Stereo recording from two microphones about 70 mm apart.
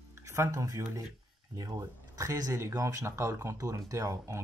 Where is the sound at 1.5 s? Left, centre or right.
Right.